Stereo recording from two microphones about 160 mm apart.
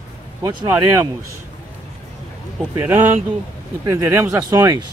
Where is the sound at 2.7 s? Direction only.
15° right (ahead or behind).